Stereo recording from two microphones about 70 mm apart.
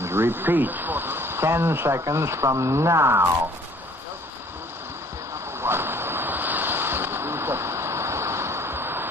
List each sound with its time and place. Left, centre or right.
0.0 s speech: right
5.6 s ocean: right